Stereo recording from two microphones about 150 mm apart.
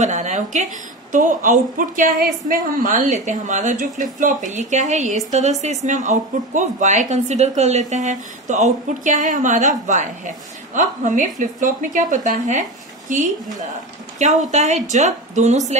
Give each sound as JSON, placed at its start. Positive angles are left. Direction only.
{"t": 0.0, "sound": "a woman's voice", "side_deg": -50}
{"t": 14.5, "sound": "a woman's voice", "side_deg": -50}